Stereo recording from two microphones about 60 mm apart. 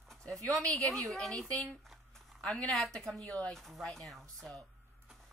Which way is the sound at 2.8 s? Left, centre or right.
Centre.